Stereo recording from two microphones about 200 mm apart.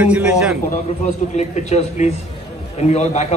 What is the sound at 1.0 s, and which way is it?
A man's voice, 35° left (ahead or behind).